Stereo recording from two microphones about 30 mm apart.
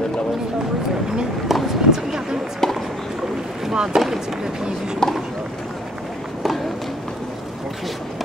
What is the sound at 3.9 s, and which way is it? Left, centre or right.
Speech, right.